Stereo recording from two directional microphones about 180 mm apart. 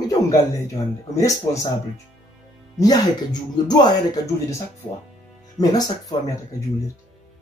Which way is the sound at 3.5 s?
25° left (ahead or behind).